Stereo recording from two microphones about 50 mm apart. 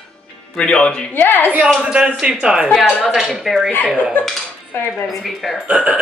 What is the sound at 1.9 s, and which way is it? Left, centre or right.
Speech, centre.